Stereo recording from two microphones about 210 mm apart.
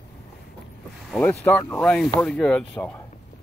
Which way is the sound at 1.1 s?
5° left (ahead or behind).